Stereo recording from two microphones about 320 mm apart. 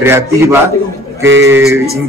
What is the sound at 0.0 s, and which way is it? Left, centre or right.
Speech, centre.